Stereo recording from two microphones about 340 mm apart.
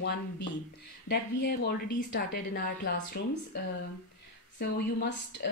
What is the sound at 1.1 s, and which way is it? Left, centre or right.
Speech, left.